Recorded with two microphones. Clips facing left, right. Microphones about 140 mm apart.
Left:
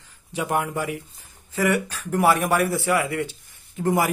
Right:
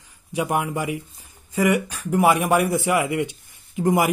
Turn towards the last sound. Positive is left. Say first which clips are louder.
# right 2 dB
turn(degrees=-15)  # may be behind; listen again after turning